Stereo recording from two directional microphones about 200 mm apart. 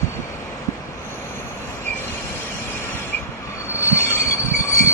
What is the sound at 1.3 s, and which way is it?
Train, 10° left (ahead or behind).